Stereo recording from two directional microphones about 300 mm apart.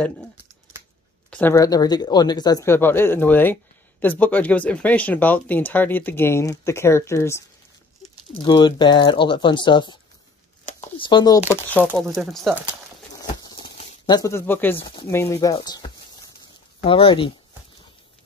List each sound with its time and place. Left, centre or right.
1.3 s speech: centre
11.9 s speech: centre
13.2 s a sound: centre
14.8 s speech: centre